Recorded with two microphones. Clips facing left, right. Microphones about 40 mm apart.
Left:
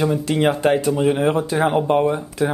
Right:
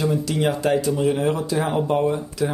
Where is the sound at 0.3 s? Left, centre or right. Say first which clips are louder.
Left 5 dB; left.